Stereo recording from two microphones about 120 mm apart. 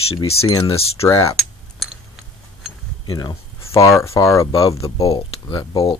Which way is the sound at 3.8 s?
25° left (ahead or behind).